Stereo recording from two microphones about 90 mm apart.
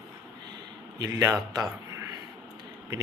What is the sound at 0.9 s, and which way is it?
A man's voice, 40° right (ahead or behind).